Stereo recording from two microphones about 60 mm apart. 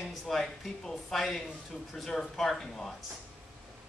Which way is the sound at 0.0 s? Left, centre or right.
Centre.